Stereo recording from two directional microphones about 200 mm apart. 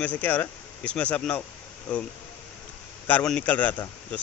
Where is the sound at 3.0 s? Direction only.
5° left (ahead or behind).